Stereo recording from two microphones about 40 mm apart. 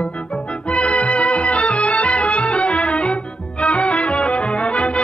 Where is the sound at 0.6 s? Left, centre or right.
Left.